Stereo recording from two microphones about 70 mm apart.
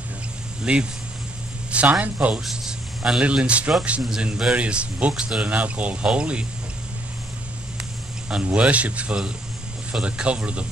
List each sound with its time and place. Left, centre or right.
0.7 s a man's voice: centre
2.4 s a man's voice: centre
8.3 s a man's voice: centre